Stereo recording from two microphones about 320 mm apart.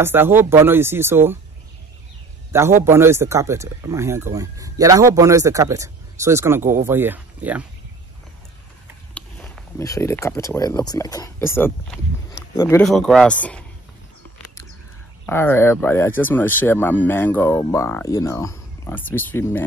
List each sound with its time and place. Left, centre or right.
0.0 s speech: centre
2.5 s speech: centre
9.1 s speech: centre
15.2 s speech: centre